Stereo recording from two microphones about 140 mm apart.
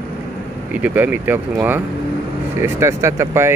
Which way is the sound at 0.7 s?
10° right (ahead or behind).